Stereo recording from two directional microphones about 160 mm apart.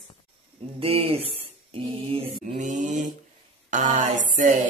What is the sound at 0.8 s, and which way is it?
Mantra, 35° right (ahead or behind).